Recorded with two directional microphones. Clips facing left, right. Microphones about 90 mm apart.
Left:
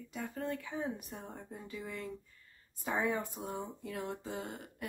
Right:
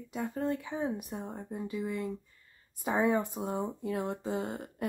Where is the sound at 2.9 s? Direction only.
40° right (ahead or behind).